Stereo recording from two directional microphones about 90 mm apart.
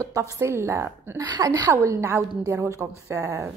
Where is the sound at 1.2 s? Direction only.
45° right (ahead or behind).